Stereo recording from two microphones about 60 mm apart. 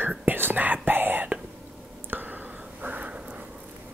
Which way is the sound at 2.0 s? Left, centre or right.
Right.